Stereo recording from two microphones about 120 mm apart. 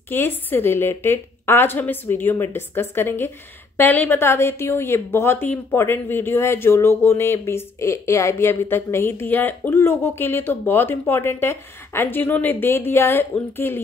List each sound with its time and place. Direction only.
0.1 s a woman's voice: 20° left (ahead or behind)